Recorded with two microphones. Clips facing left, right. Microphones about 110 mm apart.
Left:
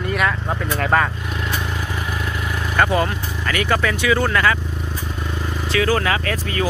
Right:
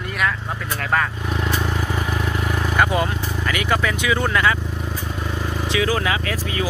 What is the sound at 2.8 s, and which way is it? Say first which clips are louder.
Speech: left 2 dB; 15° right (ahead or behind).